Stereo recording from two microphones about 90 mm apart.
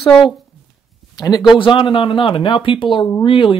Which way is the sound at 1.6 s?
70° left (ahead or behind).